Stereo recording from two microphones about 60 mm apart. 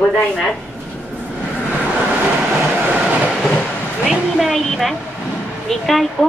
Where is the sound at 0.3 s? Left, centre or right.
Centre.